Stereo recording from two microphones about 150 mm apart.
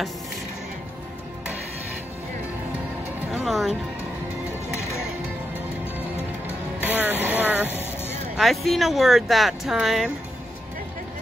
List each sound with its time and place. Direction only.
3.4 s music: centre (ahead or behind)
4.6 s music: 20° left (ahead or behind)
6.8 s vehicle: 10° right (ahead or behind)
7.8 s vehicle: 15° left (ahead or behind)
8.4 s speech: centre (ahead or behind)